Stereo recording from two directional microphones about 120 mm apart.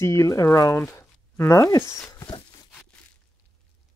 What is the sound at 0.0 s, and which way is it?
Speech, 25° left (ahead or behind).